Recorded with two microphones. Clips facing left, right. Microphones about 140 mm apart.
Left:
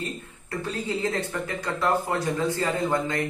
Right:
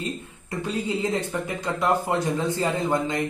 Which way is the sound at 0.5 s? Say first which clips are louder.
Right 2 dB; 15° right (ahead or behind).